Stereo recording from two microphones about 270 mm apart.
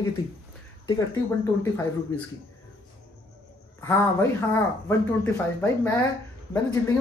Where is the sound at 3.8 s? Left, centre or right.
Centre.